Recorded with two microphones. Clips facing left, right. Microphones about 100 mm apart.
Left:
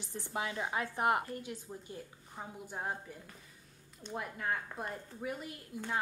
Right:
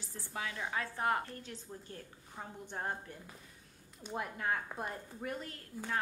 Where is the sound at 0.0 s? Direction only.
20° left (ahead or behind).